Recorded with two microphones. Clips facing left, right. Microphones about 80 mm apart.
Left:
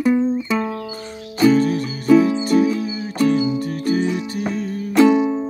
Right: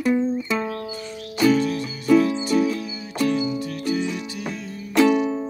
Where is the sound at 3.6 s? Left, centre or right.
Left.